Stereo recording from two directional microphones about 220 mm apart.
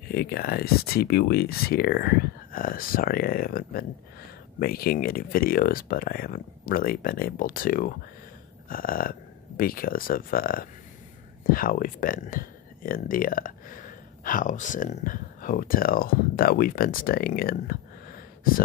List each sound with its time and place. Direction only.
0.1 s speech: 45° left (ahead or behind)